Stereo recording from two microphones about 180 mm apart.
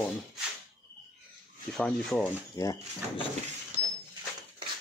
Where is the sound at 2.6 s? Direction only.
25° left (ahead or behind).